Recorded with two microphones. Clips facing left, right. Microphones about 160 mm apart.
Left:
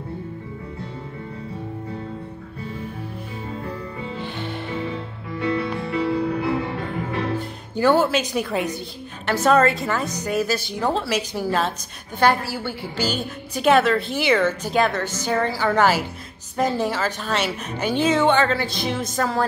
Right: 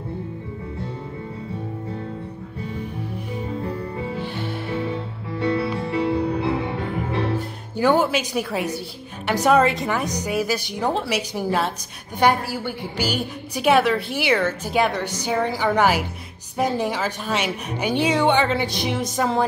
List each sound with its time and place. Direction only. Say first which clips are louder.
4.2 s music: right 1 dB; 10° right (ahead or behind)
5.4 s music: right 1 dB; 30° right (ahead or behind)
7.7 s a woman's voice: left 1 dB; 10° right (ahead or behind)